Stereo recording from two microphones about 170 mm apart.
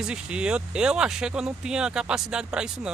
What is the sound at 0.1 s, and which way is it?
Speech, 5° right (ahead or behind).